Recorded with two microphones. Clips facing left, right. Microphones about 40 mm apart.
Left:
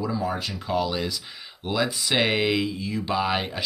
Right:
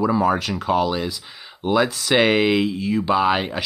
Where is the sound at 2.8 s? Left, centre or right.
Right.